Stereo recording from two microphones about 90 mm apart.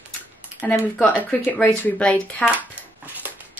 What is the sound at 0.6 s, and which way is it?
Speech, 15° left (ahead or behind).